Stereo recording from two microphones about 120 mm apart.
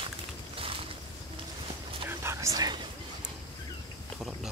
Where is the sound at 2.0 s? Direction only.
25° right (ahead or behind).